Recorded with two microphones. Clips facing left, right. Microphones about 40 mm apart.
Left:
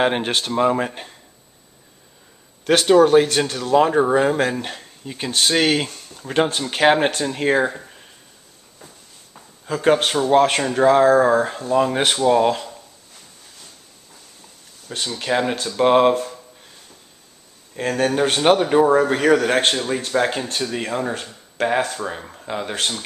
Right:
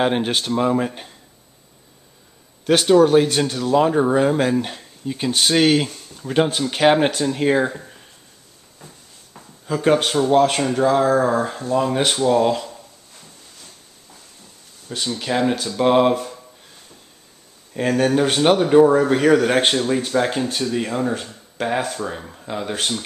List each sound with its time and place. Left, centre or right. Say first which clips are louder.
0.0 s speech: even; centre
2.9 s speech: left 1 dB; centre
8.8 s a sound: right 1 dB; centre
9.8 s speech: even; centre
14.9 s speech: left 1 dB; centre
17.7 s a man's voice: right 2 dB; centre